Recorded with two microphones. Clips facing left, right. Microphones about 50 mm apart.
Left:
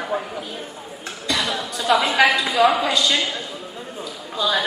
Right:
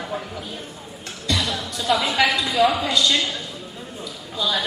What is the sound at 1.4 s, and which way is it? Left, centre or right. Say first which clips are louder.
Music: left 2 dB; centre.